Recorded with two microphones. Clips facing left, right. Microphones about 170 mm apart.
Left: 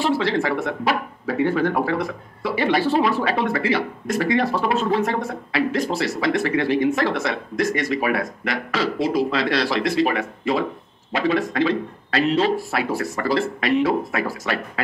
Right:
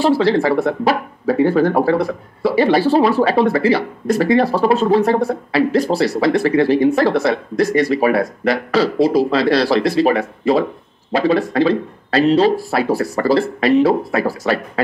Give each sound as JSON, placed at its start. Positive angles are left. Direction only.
{"t": 0.0, "sound": "speech", "side_deg": -35}